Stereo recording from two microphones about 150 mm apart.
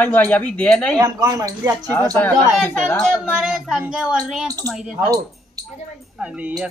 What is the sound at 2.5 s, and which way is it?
A woman's voice, centre (ahead or behind).